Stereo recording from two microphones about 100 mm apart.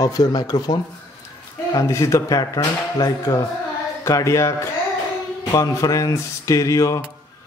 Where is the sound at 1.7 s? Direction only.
30° left (ahead or behind).